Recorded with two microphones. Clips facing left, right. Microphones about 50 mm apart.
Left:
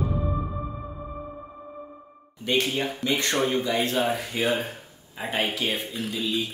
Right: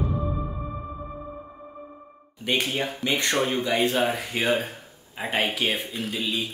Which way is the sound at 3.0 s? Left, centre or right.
Right.